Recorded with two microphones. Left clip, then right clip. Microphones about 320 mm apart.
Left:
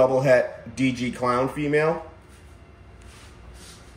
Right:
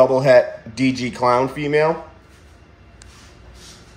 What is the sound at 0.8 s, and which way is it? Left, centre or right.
Speech, centre.